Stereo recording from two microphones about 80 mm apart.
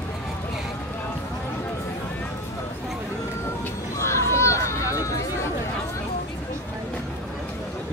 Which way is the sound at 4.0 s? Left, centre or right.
Left.